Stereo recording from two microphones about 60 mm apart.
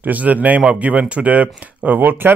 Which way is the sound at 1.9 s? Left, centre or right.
Right.